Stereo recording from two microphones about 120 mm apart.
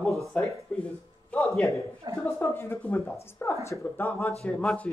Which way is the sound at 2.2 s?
25° left (ahead or behind).